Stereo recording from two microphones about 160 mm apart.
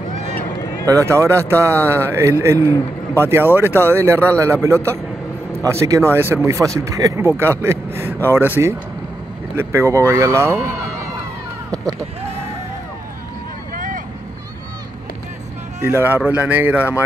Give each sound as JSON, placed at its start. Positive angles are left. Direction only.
{"t": 0.8, "sound": "speech", "side_deg": -20}
{"t": 13.7, "sound": "vehicle", "side_deg": -55}
{"t": 15.8, "sound": "speech", "side_deg": -15}